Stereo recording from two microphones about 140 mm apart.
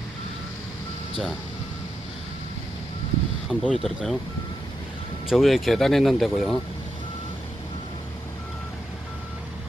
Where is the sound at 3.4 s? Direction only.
Centre (ahead or behind).